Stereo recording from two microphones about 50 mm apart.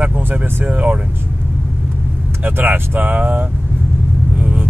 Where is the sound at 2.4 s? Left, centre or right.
Right.